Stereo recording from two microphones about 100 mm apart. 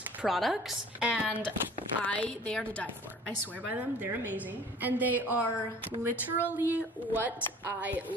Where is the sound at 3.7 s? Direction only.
20° right (ahead or behind).